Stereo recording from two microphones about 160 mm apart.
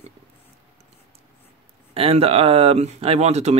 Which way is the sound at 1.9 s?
40° right (ahead or behind).